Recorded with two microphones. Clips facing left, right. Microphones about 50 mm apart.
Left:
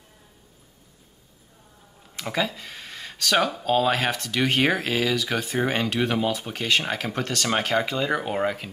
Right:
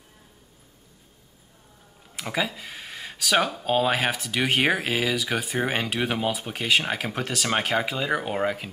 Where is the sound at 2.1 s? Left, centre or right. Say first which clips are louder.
Left 1 dB; centre.